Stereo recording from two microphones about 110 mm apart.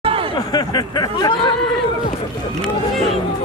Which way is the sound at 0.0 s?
55° right (ahead or behind).